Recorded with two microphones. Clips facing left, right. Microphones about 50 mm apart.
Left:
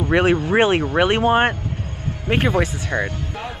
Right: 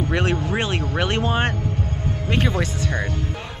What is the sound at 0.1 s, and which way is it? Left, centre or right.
Speech, left.